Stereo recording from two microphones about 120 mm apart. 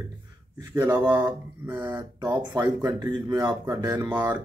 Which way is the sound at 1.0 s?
20° right (ahead or behind).